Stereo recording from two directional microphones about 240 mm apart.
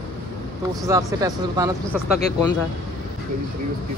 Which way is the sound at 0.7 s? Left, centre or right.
Centre.